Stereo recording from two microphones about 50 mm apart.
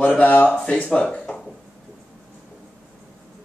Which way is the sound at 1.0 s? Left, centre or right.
Centre.